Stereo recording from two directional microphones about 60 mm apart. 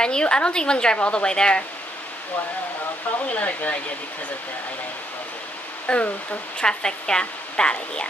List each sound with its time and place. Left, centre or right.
0.0 s a woman's voice: centre
3.3 s speech: left
5.9 s a woman's voice: left